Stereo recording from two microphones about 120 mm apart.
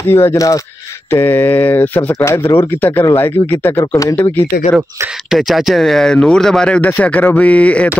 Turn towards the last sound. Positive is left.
turn(degrees=10)  # may be behind; listen again after turning